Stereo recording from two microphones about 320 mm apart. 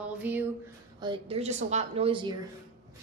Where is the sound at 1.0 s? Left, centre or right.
Centre.